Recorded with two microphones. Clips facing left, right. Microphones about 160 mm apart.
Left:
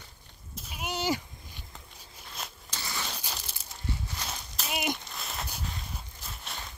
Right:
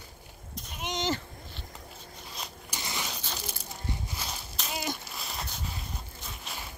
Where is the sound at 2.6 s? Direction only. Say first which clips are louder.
Right 1 dB; 15° right (ahead or behind).